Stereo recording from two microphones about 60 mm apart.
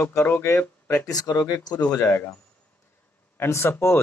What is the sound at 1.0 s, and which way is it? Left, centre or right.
Speech, left.